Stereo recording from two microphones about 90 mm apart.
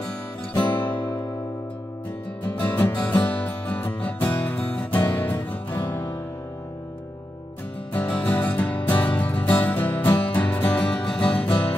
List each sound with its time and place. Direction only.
0.6 s music: 20° left (ahead or behind)
2.4 s music: 20° left (ahead or behind)
7.9 s music: 15° left (ahead or behind)